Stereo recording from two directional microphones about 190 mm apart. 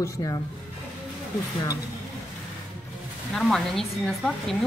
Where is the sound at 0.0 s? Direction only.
15° left (ahead or behind).